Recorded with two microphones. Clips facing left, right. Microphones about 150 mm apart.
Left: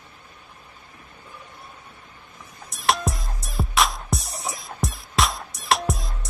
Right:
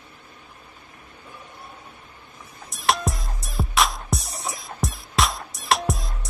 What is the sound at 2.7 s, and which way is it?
Music, centre (ahead or behind).